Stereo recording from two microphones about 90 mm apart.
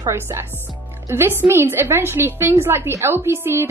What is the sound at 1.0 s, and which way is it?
A woman's voice, 25° right (ahead or behind).